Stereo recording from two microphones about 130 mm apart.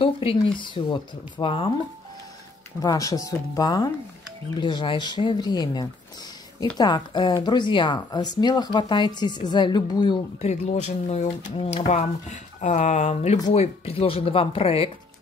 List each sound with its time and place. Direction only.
0.0 s speech: 45° left (ahead or behind)
2.8 s speech: 25° left (ahead or behind)
10.4 s speech: 55° left (ahead or behind)